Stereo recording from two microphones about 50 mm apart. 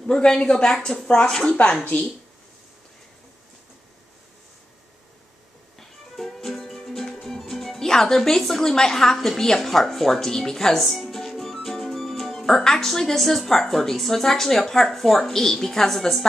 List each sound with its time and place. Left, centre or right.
0.0 s speech: centre
1.6 s a woman's voice: left
5.8 s music: centre
6.6 s speech: centre